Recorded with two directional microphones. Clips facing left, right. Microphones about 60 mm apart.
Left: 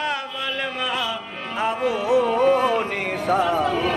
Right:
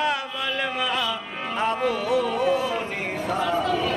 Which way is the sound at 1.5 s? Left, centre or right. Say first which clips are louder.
Left 1 dB; centre.